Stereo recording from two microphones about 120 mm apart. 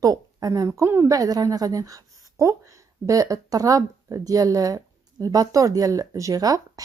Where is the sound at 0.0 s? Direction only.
30° right (ahead or behind).